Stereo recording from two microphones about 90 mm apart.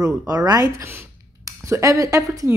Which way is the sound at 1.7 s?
40° right (ahead or behind).